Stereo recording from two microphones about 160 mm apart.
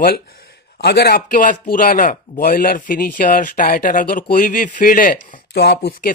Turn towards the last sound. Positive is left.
turn(degrees=80)